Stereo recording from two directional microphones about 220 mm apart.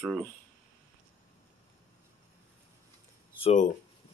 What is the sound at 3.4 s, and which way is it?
Speech, 30° left (ahead or behind).